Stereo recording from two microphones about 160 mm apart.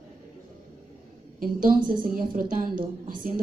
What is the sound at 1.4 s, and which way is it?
A woman's voice, 60° right (ahead or behind).